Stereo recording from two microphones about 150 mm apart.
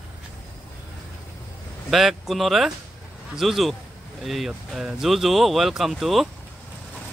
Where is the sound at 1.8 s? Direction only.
Centre (ahead or behind).